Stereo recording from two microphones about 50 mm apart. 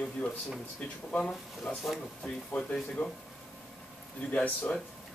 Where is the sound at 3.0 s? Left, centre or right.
Left.